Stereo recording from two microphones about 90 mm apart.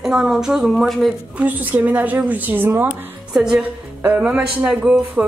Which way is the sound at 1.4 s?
15° right (ahead or behind).